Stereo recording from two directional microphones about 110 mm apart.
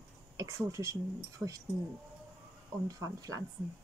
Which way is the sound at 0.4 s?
30° right (ahead or behind).